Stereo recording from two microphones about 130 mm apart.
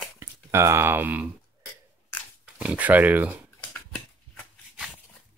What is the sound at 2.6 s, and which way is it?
Speech, 10° right (ahead or behind).